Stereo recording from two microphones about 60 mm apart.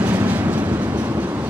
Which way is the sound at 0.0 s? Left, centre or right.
Right.